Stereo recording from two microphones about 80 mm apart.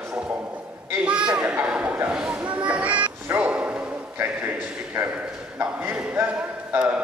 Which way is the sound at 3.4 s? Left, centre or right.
Centre.